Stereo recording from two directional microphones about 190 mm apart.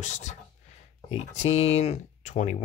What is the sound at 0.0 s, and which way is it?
Speech, 40° left (ahead or behind).